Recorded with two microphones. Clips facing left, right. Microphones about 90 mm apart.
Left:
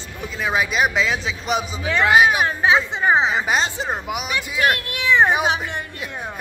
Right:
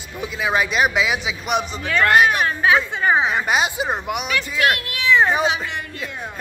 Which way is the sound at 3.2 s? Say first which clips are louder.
Even; centre (ahead or behind).